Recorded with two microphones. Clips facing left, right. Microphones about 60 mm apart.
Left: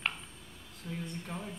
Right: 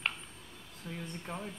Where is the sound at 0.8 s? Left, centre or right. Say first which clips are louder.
Left 2 dB; right.